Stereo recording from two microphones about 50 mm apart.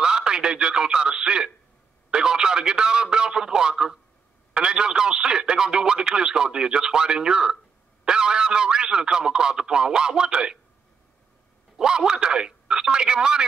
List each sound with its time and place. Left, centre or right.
0.0 s radio: centre
2.0 s a sound: centre
4.6 s a man's voice: centre
11.7 s speech: centre